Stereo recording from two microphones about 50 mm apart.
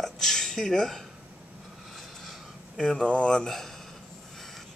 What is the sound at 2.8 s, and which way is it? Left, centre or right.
Speech, centre.